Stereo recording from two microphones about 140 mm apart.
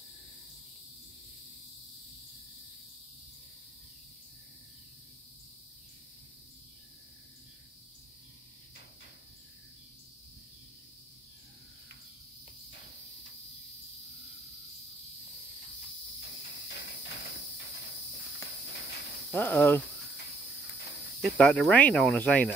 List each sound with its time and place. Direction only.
19.3 s speech: 15° left (ahead or behind)
21.2 s speech: centre (ahead or behind)